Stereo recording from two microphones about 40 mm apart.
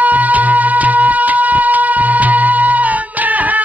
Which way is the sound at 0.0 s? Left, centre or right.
Right.